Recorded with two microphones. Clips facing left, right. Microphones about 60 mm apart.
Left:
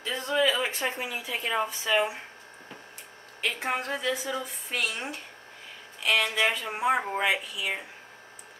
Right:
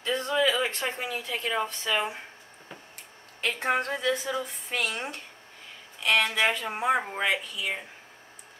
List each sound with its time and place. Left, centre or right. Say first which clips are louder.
0.0 s speech: right 1 dB; centre
3.4 s a woman's voice: right 3 dB; centre